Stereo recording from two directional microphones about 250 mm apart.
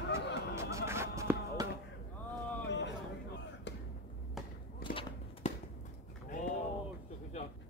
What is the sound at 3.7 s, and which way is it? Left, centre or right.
Music, left.